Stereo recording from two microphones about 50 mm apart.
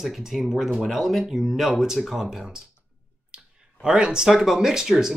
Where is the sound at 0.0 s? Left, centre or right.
Centre.